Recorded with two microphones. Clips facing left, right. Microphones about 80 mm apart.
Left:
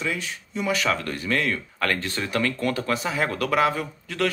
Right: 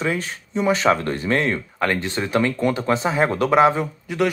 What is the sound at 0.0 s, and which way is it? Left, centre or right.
Speech, right.